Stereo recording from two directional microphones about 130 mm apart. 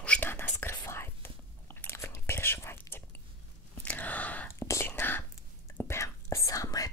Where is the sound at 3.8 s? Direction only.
10° left (ahead or behind).